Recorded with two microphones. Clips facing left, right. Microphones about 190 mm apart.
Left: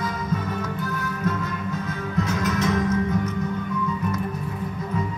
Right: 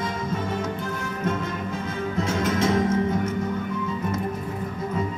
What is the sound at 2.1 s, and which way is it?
Music, 25° right (ahead or behind).